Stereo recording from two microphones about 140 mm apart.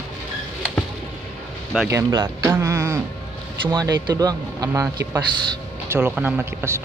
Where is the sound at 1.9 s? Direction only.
20° right (ahead or behind).